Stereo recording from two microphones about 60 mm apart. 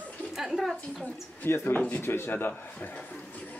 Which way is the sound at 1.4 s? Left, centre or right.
Left.